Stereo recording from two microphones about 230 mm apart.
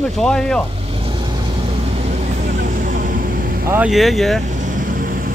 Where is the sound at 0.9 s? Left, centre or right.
Right.